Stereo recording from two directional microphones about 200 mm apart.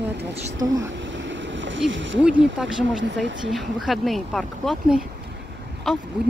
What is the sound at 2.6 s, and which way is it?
Speech, 5° right (ahead or behind).